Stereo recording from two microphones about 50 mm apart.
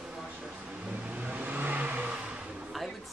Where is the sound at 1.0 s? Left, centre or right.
Right.